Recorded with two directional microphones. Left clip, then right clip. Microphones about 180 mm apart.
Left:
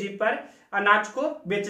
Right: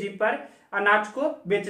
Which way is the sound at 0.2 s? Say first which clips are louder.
Even; 10° right (ahead or behind).